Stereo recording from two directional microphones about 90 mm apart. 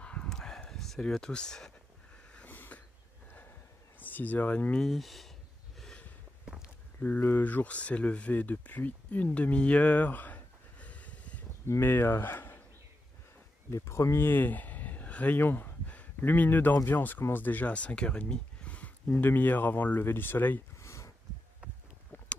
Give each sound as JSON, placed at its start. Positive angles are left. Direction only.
{"t": 0.0, "sound": "a sound", "side_deg": 10}
{"t": 2.3, "sound": "wheeze", "side_deg": 20}
{"t": 4.0, "sound": "speech", "side_deg": 20}
{"t": 4.8, "sound": "speech", "side_deg": 0}
{"t": 5.8, "sound": "snort", "side_deg": 5}
{"t": 7.0, "sound": "speech", "side_deg": 20}
{"t": 11.6, "sound": "speech", "side_deg": 25}
{"t": 13.7, "sound": "speech", "side_deg": 35}